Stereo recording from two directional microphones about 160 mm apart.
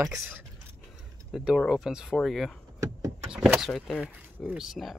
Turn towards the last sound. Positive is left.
turn(degrees=0)  # may be behind; listen again after turning